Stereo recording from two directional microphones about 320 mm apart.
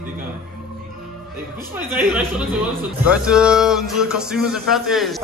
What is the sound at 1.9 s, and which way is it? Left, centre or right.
A man's voice, centre.